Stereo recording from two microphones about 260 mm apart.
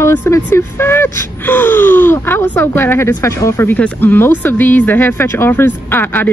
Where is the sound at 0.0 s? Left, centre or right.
Centre.